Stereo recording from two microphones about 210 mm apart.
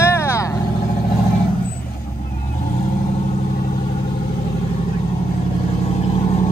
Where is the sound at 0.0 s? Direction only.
10° left (ahead or behind).